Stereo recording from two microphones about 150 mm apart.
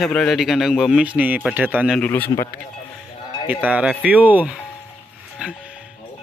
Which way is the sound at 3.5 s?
10° right (ahead or behind).